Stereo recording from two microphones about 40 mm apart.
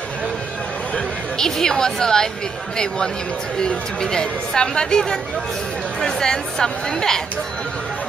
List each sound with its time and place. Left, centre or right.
1.4 s speech: centre
3.5 s speech: centre